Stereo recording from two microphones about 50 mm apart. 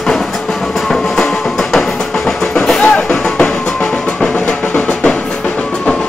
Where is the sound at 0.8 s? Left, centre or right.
Centre; by 4.9 s left.